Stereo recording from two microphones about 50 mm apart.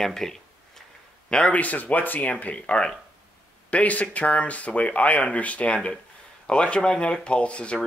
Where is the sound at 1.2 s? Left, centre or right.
Centre.